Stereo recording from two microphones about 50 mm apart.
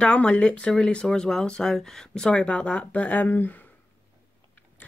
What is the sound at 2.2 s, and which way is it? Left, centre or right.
Speech, left.